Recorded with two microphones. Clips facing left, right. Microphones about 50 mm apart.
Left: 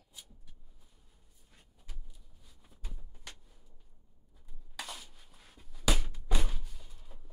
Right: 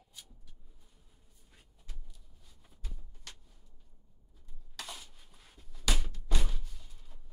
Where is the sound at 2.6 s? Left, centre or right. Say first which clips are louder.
Left 1 dB; centre.